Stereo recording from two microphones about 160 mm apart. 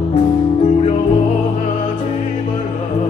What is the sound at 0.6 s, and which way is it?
Music, 35° left (ahead or behind).